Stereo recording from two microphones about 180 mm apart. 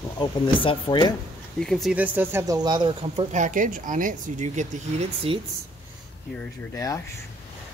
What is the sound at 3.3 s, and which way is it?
Speech, 45° right (ahead or behind).